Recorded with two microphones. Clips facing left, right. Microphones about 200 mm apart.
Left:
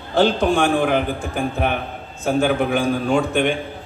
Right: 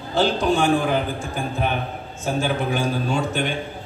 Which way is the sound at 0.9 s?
60° left (ahead or behind).